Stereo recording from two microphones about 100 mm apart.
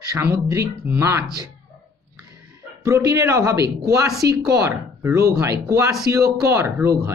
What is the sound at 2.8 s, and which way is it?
Speech, 30° right (ahead or behind).